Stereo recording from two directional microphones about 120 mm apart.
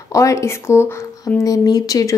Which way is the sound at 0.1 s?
25° left (ahead or behind).